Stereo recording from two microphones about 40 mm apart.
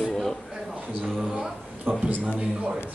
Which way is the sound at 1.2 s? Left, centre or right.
Right.